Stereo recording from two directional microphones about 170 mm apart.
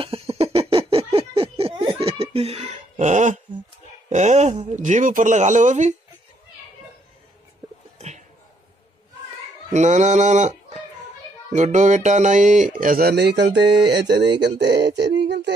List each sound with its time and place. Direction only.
0.0 s a sound: 30° right (ahead or behind)
4.1 s speech: 45° right (ahead or behind)
9.7 s speech: 45° right (ahead or behind)
13.1 s music: 80° right